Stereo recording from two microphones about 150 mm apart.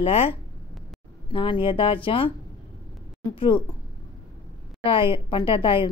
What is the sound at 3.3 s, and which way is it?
Speech, 35° left (ahead or behind).